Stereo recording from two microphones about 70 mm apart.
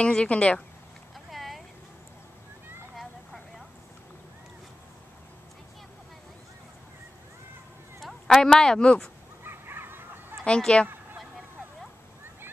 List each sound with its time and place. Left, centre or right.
0.0 s speech: centre
1.3 s a sound: centre
8.0 s speech: centre
9.4 s honk: right
10.4 s speech: centre